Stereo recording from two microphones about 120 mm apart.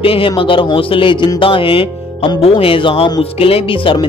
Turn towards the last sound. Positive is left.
turn(degrees=45)  # may be behind; listen again after turning